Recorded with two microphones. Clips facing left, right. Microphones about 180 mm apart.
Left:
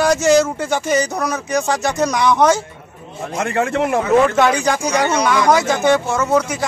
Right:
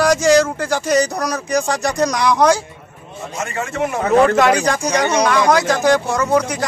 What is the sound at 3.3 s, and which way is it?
Speech, 60° left (ahead or behind).